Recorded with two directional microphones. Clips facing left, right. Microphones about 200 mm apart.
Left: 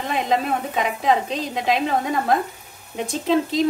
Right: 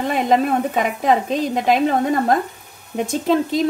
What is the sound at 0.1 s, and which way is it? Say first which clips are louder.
A woman's voice: right 4 dB; 50° right (ahead or behind).